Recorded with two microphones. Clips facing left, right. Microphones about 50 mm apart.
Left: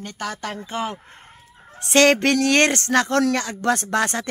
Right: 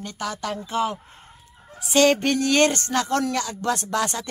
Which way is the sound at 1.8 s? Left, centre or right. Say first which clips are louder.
Left 2 dB; left.